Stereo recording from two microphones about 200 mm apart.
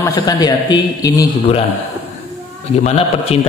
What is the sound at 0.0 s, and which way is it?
A man's voice, 20° left (ahead or behind).